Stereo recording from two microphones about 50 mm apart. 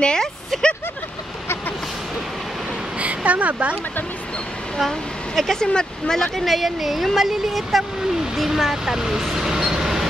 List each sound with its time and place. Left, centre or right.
0.0 s speech: centre
0.5 s vehicle: centre
3.0 s speech: right
4.7 s speech: centre
9.3 s vehicle: centre